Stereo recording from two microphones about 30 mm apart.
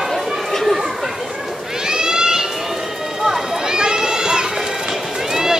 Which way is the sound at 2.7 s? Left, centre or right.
Centre.